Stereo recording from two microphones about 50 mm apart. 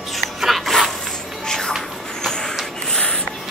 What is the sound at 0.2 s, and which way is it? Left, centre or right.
Dog, centre.